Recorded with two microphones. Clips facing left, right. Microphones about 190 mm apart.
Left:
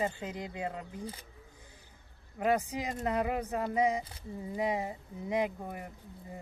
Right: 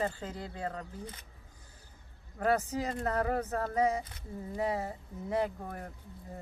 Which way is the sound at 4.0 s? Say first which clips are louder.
Even; 30° left (ahead or behind).